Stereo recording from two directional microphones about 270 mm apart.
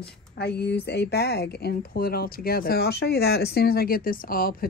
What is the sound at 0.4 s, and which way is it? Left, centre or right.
Speech, left.